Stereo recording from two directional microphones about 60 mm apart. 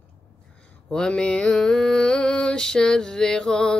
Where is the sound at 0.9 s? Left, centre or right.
Centre.